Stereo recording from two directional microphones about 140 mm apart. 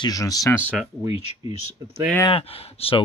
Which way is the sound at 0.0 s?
25° left (ahead or behind).